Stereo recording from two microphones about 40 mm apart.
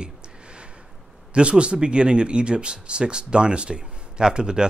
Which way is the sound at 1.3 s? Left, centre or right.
Right.